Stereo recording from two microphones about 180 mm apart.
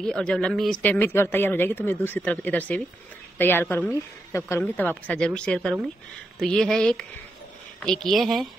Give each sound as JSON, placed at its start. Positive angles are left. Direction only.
{"t": 0.0, "sound": "a woman's voice", "side_deg": 5}